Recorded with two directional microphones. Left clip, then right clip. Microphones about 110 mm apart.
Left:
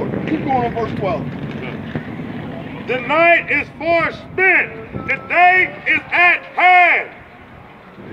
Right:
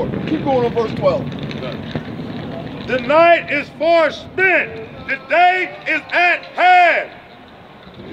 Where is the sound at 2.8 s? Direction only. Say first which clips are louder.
Right 2 dB; 45° right (ahead or behind).